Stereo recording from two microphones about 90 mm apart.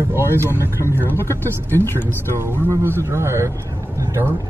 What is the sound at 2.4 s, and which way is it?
Speech, 25° right (ahead or behind).